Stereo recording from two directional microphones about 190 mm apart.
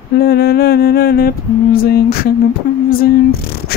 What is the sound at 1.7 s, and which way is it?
Mantra, 50° left (ahead or behind).